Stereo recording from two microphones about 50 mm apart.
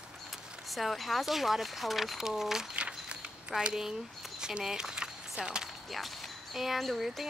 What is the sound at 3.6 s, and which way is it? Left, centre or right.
Speech, centre.